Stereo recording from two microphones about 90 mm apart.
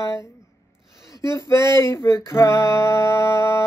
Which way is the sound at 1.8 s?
30° left (ahead or behind).